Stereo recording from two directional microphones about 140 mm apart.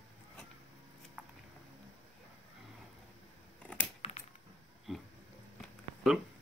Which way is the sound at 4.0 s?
50° left (ahead or behind).